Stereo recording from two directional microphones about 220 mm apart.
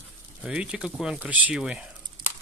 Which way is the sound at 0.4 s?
5° right (ahead or behind).